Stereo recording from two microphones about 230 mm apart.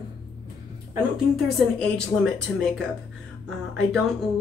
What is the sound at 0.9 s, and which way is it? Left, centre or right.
Speech, centre.